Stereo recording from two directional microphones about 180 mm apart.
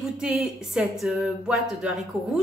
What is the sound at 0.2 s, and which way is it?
A woman's voice, 5° right (ahead or behind).